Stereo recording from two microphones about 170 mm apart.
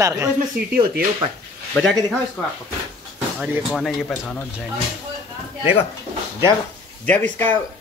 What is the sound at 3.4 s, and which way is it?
Speech, centre (ahead or behind).